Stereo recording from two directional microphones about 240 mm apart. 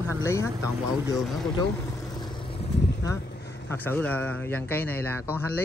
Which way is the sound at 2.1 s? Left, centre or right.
Centre.